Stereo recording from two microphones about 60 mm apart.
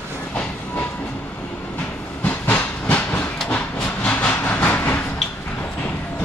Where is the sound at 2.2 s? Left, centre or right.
Left.